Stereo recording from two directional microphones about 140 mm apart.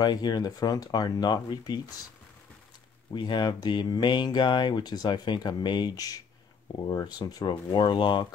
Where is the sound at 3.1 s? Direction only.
35° left (ahead or behind).